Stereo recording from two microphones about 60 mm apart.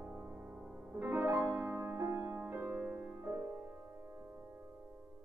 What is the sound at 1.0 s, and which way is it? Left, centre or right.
Music, right.